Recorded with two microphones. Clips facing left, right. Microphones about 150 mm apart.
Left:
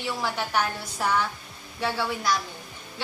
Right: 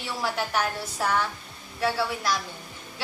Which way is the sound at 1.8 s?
5° right (ahead or behind).